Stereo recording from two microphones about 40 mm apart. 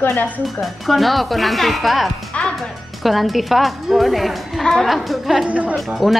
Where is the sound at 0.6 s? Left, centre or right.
Centre.